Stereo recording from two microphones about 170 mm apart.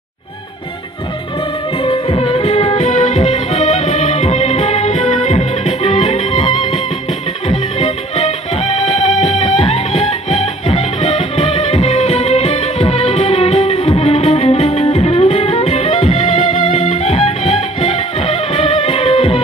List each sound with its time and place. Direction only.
1.9 s music: 30° left (ahead or behind)